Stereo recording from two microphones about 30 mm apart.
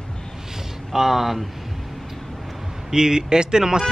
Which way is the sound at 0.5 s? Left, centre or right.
Centre.